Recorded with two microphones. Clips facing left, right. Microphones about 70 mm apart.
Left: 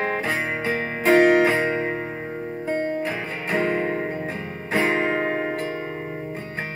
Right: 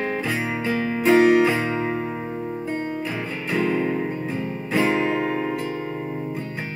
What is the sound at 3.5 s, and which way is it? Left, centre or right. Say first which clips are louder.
Music: right 1 dB; left.